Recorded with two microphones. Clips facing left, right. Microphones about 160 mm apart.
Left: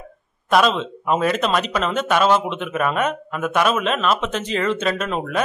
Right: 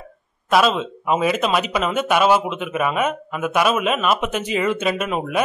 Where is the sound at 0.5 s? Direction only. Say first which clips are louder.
Even; 5° right (ahead or behind).